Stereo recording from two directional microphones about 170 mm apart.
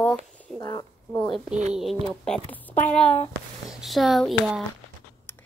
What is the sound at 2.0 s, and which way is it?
Speech, 5° left (ahead or behind).